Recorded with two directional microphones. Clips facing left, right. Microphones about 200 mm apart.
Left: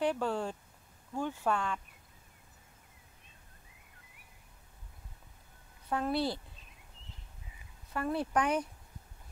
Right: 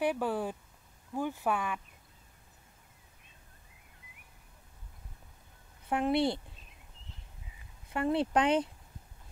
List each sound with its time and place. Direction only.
0.0 s speech: 10° right (ahead or behind)
5.9 s speech: 20° right (ahead or behind)
7.9 s speech: 20° right (ahead or behind)